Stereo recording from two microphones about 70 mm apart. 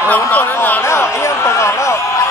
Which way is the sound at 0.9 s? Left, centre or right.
Left.